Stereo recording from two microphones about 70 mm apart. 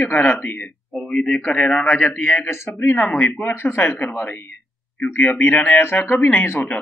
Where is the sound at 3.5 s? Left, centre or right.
Left.